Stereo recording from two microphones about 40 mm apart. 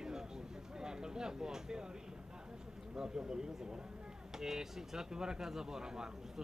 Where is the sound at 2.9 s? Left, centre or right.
Centre.